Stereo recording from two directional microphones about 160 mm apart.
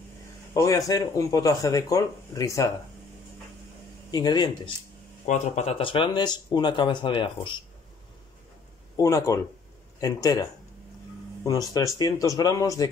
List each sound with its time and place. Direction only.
0.6 s speech: 20° left (ahead or behind)
4.1 s speech: 25° left (ahead or behind)
5.2 s speech: 45° left (ahead or behind)
8.9 s speech: 20° left (ahead or behind)
11.4 s speech: 25° left (ahead or behind)